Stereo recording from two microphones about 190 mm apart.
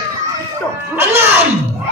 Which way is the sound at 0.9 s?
15° right (ahead or behind).